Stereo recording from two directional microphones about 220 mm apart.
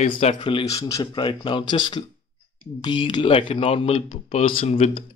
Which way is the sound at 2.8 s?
20° left (ahead or behind).